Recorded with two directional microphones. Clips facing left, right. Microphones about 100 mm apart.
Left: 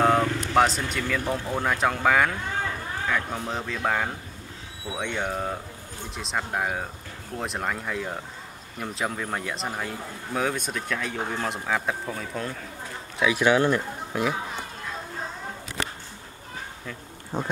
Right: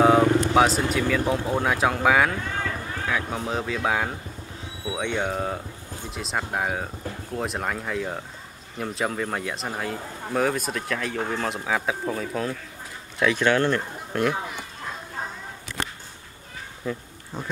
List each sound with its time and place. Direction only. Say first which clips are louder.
0.0 s speech: right 4 dB; 5° right (ahead or behind)
16.8 s speech: right 12 dB; 15° right (ahead or behind)